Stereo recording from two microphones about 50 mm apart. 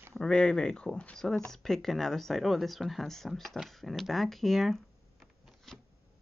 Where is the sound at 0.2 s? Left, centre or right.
Centre.